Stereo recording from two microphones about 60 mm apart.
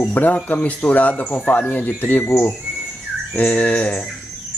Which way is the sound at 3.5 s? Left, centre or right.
Centre.